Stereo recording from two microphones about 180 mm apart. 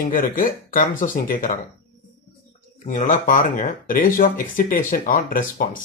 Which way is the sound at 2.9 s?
45° left (ahead or behind).